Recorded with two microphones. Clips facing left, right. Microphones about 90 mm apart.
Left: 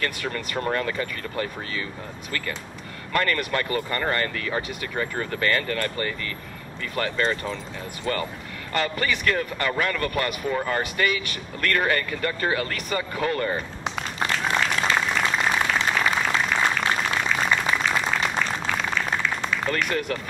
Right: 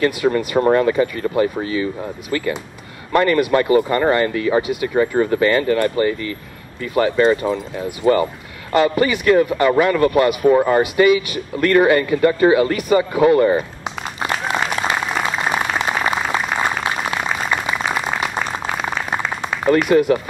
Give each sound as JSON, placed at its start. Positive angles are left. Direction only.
{"t": 0.0, "sound": "speech", "side_deg": -15}
{"t": 14.6, "sound": "a sound", "side_deg": -20}
{"t": 17.6, "sound": "applause", "side_deg": -15}
{"t": 19.5, "sound": "speech", "side_deg": -20}